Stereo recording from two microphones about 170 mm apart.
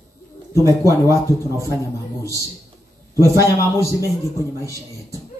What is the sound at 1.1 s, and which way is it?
Speech, 20° right (ahead or behind).